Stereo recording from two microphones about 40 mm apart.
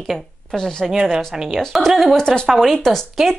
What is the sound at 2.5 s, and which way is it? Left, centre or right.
Speech, centre.